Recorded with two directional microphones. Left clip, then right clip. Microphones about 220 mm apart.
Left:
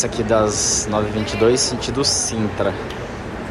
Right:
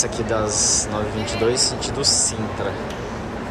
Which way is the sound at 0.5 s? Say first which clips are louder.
Even; 25° right (ahead or behind).